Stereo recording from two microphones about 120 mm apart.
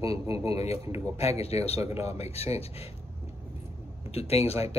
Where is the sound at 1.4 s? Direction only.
60° left (ahead or behind).